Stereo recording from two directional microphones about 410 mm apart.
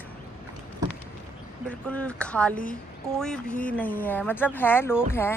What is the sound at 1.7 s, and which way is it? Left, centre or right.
Speech, centre.